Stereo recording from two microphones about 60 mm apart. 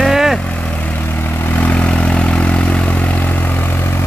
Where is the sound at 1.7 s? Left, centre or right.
Centre; by 4.1 s left.